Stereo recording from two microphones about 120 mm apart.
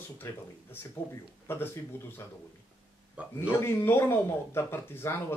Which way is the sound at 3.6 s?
20° left (ahead or behind).